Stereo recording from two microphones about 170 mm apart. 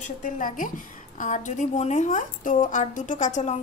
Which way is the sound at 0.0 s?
50° left (ahead or behind).